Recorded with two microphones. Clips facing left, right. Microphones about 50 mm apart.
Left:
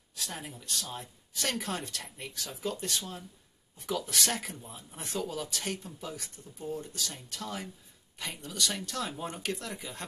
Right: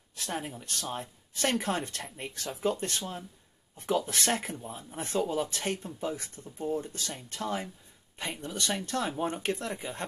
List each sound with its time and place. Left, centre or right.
0.1 s speech: right